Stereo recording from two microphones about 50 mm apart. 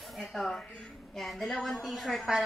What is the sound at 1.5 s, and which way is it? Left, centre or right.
Speech, centre.